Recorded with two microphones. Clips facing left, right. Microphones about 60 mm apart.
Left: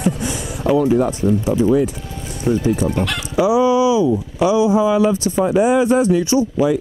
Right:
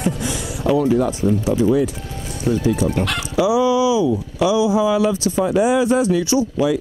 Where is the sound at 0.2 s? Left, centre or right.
Left.